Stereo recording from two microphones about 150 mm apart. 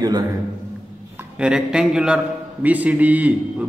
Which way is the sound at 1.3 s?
5° right (ahead or behind).